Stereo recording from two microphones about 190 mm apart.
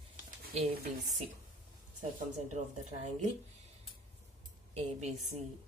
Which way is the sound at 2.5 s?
40° right (ahead or behind).